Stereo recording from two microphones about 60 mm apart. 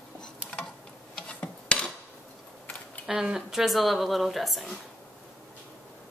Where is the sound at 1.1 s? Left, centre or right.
Left.